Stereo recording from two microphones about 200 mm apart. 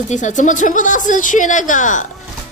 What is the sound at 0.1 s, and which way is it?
Speech, 40° left (ahead or behind).